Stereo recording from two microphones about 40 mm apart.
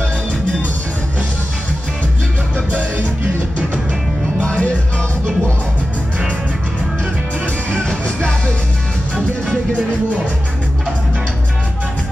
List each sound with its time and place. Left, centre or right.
4.4 s music: left
7.7 s music: left